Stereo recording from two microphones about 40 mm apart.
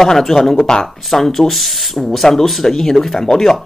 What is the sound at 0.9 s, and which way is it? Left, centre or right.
Speech, centre.